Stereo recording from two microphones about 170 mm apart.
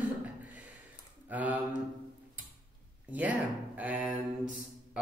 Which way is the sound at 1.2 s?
10° right (ahead or behind).